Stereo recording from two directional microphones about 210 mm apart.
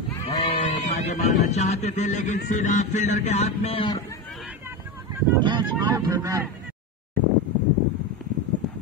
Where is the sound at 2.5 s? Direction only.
35° left (ahead or behind); by 4.2 s 20° left (ahead or behind).